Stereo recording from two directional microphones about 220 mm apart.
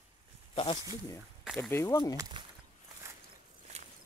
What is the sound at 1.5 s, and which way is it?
Speech, 10° left (ahead or behind).